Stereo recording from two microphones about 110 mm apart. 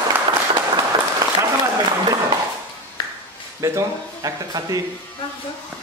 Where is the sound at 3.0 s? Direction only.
35° left (ahead or behind).